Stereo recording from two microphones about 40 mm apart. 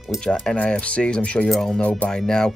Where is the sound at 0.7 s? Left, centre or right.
Left.